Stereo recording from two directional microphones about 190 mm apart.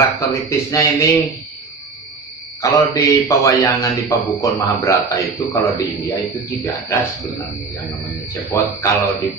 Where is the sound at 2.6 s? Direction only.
15° left (ahead or behind).